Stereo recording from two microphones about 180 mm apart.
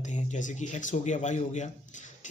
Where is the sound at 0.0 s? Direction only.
40° left (ahead or behind).